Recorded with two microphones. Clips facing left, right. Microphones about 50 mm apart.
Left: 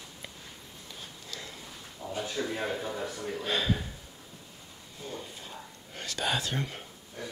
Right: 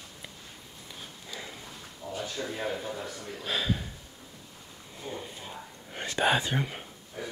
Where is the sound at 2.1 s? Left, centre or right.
Centre.